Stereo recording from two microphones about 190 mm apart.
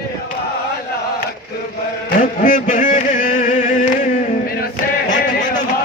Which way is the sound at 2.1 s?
45° left (ahead or behind).